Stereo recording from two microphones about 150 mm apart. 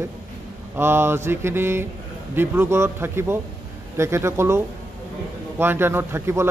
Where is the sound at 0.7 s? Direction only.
15° right (ahead or behind).